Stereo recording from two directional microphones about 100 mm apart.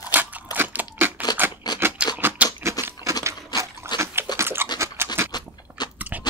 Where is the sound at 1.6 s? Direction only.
40° left (ahead or behind).